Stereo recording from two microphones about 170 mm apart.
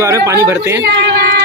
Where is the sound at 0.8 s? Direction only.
70° right (ahead or behind).